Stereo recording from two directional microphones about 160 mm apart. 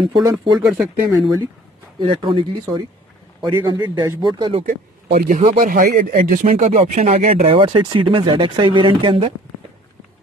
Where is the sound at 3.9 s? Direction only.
25° right (ahead or behind).